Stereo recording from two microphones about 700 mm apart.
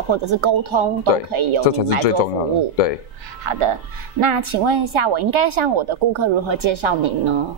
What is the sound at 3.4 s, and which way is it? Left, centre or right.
Speech, right.